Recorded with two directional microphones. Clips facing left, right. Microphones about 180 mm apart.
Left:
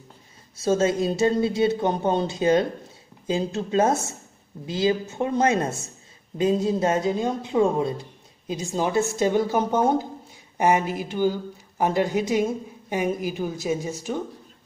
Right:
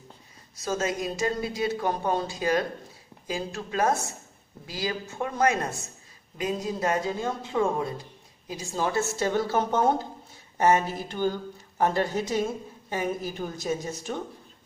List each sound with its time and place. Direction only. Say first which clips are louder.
0.6 s a woman's voice: left 7 dB; 30° left (ahead or behind); by 14.2 s 10° left (ahead or behind)